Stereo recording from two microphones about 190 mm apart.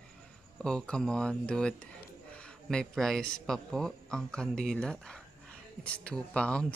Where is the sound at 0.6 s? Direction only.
5° left (ahead or behind).